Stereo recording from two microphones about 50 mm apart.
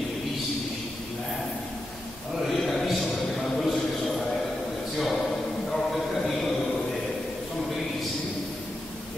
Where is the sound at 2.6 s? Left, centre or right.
Centre.